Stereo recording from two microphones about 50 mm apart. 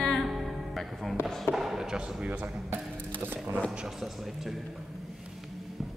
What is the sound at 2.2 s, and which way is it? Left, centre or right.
Speech, right.